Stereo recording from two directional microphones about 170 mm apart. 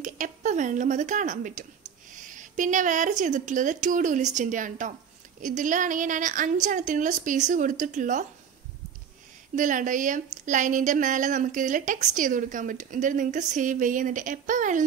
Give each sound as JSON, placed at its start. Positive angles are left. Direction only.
{"t": 0.0, "sound": "a woman's voice", "side_deg": -45}
{"t": 9.6, "sound": "a woman's voice", "side_deg": -50}